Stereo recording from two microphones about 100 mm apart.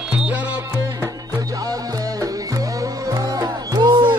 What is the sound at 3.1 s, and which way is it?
Music, 45° right (ahead or behind).